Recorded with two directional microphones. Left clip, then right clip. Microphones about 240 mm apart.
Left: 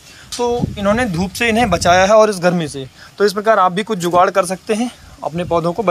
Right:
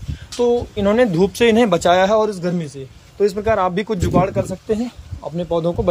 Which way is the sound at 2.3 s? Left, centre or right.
Centre.